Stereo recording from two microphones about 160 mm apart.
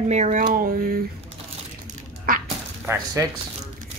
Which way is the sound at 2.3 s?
60° right (ahead or behind).